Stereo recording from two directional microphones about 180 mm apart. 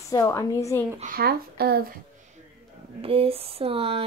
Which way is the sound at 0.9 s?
50° right (ahead or behind).